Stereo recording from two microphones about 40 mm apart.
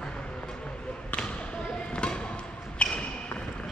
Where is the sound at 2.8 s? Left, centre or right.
Left.